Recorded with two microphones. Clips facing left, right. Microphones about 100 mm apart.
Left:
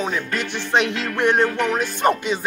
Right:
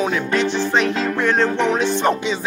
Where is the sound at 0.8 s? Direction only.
70° left (ahead or behind).